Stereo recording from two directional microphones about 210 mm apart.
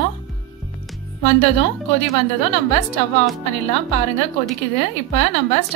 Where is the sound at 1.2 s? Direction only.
30° left (ahead or behind).